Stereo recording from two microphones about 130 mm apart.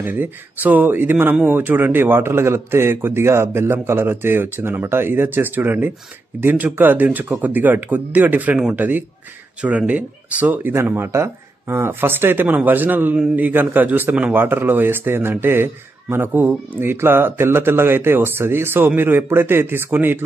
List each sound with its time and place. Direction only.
0.0 s speech: 15° right (ahead or behind)